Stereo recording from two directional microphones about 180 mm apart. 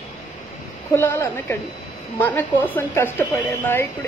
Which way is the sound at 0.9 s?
15° left (ahead or behind).